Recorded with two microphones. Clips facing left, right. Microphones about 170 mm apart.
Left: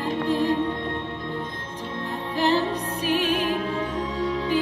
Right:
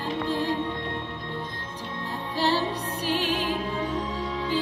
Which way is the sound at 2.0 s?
20° left (ahead or behind).